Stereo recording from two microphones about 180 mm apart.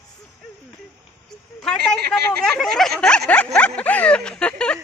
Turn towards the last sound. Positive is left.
turn(degrees=5)  # may be behind; listen again after turning